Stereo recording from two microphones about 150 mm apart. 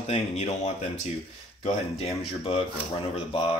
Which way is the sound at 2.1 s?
40° left (ahead or behind).